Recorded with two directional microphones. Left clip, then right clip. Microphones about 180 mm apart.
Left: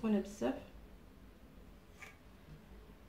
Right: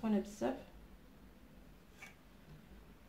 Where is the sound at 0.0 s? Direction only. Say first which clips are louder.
Left 1 dB; 30° right (ahead or behind).